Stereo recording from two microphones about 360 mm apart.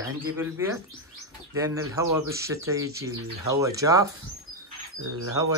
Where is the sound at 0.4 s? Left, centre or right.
Centre.